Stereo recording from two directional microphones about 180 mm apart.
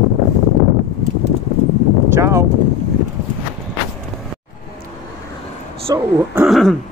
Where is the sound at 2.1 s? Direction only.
15° right (ahead or behind).